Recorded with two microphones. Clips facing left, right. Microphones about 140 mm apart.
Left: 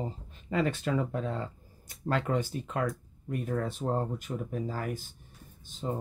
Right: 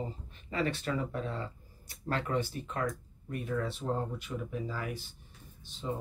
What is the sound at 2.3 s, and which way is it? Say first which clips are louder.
Speech: left 1 dB; 30° left (ahead or behind).